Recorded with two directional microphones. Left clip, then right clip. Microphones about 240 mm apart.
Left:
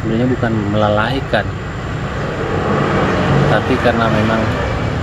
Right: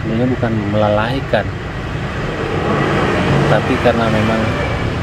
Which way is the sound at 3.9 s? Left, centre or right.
Centre.